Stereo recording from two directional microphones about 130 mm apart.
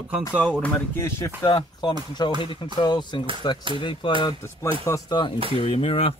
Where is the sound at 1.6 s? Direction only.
35° left (ahead or behind).